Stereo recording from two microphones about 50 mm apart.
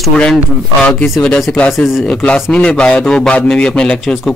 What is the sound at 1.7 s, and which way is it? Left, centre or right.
Speech, centre.